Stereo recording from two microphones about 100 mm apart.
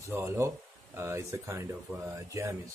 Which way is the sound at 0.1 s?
25° right (ahead or behind).